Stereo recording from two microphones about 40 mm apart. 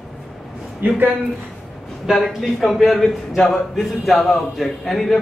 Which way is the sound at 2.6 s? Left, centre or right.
Centre.